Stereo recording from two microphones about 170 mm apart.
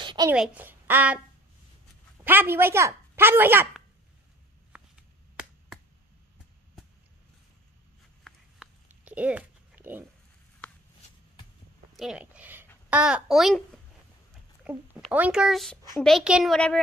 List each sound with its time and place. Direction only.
0.0 s a sound: 25° right (ahead or behind)
0.3 s a woman's voice: 10° right (ahead or behind)
2.2 s a woman's voice: 10° right (ahead or behind)
5.3 s finger snapping: 5° right (ahead or behind)
8.8 s a sound: 5° right (ahead or behind)
12.0 s a woman's voice: 5° right (ahead or behind)
14.7 s a child's voice: 10° right (ahead or behind)